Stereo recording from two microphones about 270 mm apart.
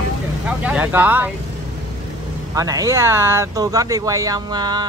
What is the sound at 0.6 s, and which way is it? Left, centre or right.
Speech, centre.